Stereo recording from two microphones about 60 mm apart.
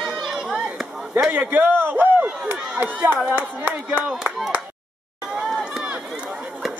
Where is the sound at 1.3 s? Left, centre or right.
Right.